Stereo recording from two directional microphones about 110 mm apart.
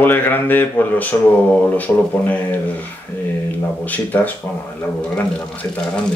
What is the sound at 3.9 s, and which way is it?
Speech, 15° left (ahead or behind).